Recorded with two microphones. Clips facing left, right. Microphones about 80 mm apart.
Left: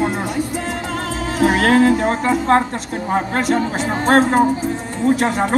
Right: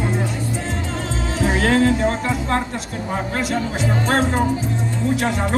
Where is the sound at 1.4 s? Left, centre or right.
Left.